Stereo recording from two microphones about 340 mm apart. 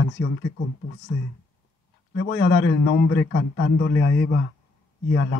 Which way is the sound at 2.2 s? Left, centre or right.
Left.